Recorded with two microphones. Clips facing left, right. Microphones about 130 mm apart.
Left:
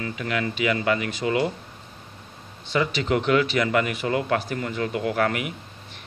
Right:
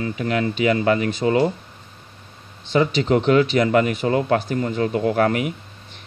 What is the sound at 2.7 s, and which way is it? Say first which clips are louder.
Speech: right 5 dB; 30° right (ahead or behind).